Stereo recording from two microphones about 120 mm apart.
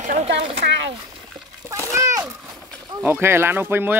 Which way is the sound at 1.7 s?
25° right (ahead or behind).